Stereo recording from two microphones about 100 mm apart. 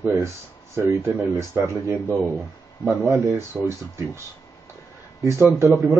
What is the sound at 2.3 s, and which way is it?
Speech, centre (ahead or behind).